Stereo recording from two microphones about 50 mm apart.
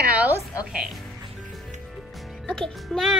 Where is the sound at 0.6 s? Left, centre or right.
Centre.